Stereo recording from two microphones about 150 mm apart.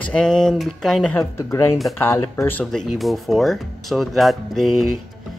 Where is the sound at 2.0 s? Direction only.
15° left (ahead or behind).